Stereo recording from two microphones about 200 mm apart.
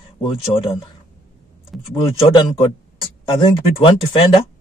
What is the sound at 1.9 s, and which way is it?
Speech, 25° left (ahead or behind).